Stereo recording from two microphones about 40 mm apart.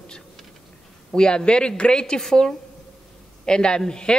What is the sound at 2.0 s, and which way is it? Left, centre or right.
Speech, centre.